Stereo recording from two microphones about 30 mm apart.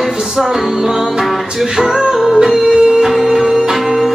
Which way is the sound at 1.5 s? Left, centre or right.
Centre.